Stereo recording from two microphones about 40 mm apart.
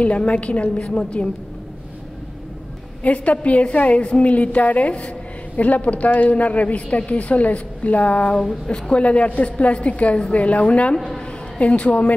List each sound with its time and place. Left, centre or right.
0.0 s a woman's voice: left
3.0 s a woman's voice: left
11.1 s a sound: centre
11.6 s a woman's voice: left